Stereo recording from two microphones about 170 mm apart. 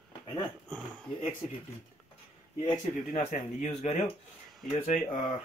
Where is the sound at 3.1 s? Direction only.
45° left (ahead or behind).